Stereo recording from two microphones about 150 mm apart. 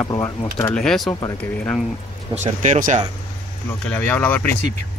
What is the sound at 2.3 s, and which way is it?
Speech, 50° right (ahead or behind).